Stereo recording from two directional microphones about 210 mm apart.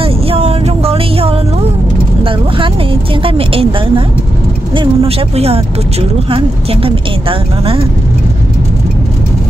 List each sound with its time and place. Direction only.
0.0 s a sound: 30° right (ahead or behind)
2.2 s vehicle: 25° right (ahead or behind)
4.7 s speech: 30° right (ahead or behind)